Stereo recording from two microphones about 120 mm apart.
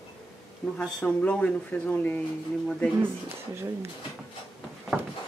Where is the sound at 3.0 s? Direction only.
20° right (ahead or behind).